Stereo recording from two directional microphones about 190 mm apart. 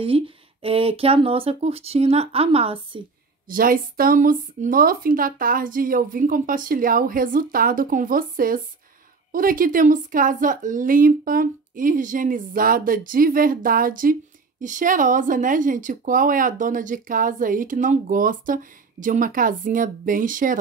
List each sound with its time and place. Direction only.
0.0 s speech: 30° right (ahead or behind)
3.4 s speech: 50° right (ahead or behind)